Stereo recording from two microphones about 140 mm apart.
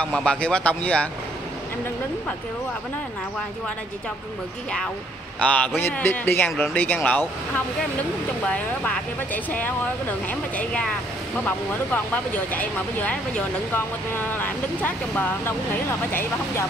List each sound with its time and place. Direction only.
0.0 s speech: 5° left (ahead or behind)
5.4 s speech: 10° left (ahead or behind)